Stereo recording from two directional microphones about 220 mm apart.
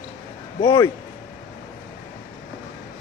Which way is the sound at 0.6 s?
20° left (ahead or behind).